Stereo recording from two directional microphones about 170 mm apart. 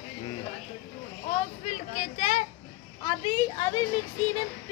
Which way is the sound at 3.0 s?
25° left (ahead or behind).